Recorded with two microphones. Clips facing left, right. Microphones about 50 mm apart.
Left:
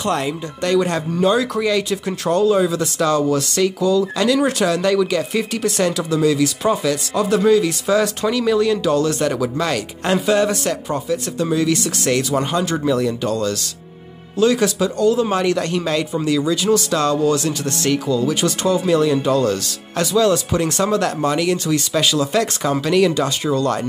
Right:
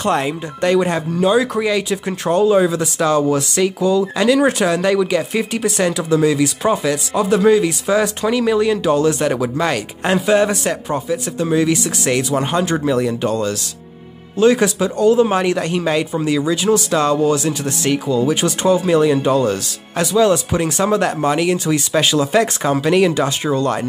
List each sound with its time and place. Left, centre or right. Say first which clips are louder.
0.1 s speech: right 3 dB; right